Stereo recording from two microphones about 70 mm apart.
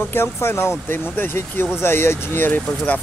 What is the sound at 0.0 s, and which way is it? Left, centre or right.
Speech, left.